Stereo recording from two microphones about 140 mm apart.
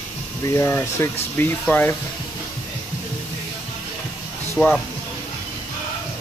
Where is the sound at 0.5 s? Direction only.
20° left (ahead or behind).